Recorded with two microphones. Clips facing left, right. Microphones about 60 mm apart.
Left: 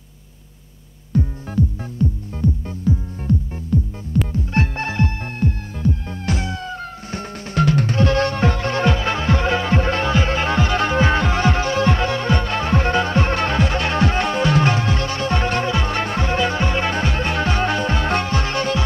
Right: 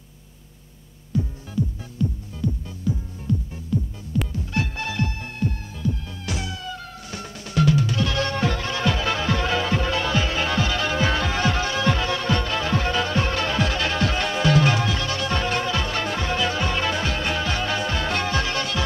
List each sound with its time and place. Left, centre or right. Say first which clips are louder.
1.1 s music: left 5 dB; left